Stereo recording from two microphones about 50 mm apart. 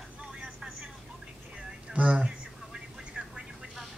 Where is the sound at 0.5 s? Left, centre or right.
Right.